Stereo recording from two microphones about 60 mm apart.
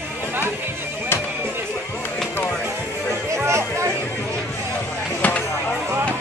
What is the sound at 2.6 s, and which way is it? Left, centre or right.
Music, right.